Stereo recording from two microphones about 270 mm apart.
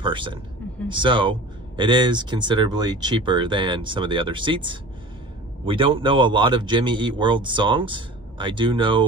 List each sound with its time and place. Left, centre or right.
0.0 s speech: centre